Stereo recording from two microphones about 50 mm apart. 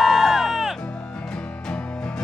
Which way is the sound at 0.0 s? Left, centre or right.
Centre.